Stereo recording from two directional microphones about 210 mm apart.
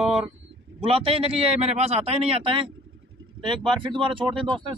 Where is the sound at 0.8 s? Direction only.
25° right (ahead or behind).